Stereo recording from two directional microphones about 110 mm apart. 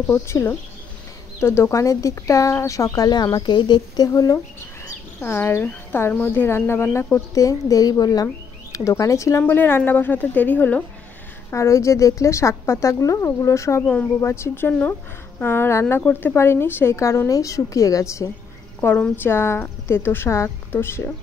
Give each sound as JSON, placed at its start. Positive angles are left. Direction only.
{"t": 0.1, "sound": "speech", "side_deg": 20}
{"t": 4.8, "sound": "speech", "side_deg": 20}
{"t": 9.4, "sound": "a woman's voice", "side_deg": 20}
{"t": 11.5, "sound": "speech", "side_deg": 25}